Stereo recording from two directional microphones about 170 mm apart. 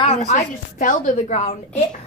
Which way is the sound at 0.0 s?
40° left (ahead or behind).